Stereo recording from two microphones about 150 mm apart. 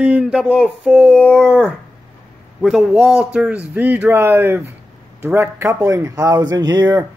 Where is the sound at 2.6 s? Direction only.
5° right (ahead or behind).